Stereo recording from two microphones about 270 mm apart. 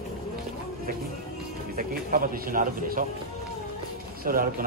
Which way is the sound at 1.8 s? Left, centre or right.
Right.